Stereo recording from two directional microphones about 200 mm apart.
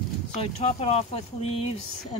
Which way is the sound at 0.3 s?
30° left (ahead or behind).